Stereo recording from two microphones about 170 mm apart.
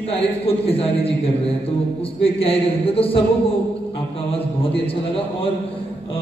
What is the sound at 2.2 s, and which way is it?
A man's voice, 35° left (ahead or behind).